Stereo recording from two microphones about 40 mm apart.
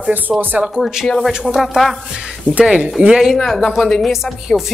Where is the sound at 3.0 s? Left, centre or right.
Right.